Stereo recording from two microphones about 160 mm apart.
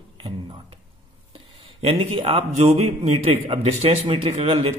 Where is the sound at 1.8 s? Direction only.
35° right (ahead or behind).